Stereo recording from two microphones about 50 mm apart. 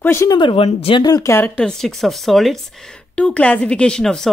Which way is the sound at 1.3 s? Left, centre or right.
Left.